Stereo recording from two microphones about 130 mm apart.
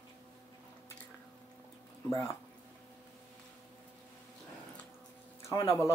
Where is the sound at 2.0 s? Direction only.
25° left (ahead or behind).